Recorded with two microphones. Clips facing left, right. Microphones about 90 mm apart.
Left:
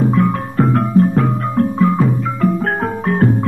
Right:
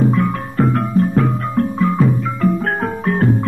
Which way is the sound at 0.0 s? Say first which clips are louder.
Left 1 dB; 25° left (ahead or behind).